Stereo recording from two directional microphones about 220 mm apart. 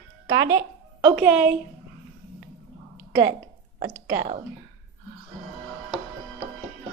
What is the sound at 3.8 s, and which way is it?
Speech, 25° right (ahead or behind).